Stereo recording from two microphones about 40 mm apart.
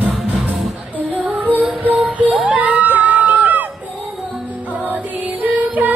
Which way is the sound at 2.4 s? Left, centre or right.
Right.